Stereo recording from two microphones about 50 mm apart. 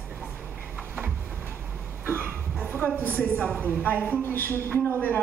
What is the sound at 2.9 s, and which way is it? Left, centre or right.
A woman's voice, left.